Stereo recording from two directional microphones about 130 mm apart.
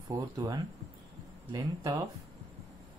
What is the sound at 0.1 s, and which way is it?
Speech, 30° right (ahead or behind).